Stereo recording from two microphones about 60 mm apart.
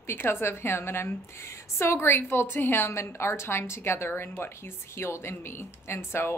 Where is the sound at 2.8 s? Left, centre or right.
Left.